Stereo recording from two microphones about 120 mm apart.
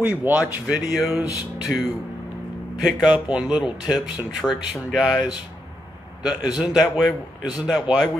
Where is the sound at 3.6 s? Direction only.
35° left (ahead or behind).